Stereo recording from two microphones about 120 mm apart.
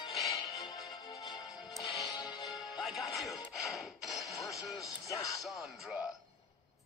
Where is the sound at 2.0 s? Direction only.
35° left (ahead or behind).